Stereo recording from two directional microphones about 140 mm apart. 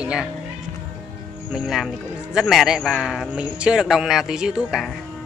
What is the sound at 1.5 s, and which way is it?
Speech, 5° right (ahead or behind).